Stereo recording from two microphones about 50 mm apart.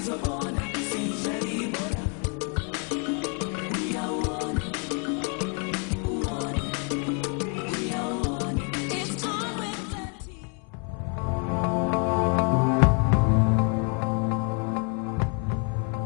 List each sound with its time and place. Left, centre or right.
0.0 s music: centre
11.4 s music: centre